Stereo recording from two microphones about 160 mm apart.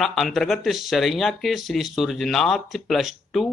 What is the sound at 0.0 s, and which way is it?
Speech, centre (ahead or behind).